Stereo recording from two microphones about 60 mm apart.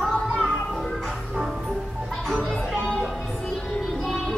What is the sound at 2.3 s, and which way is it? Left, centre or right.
Music, centre.